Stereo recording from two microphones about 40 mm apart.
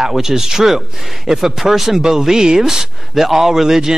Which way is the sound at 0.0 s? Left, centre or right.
Centre.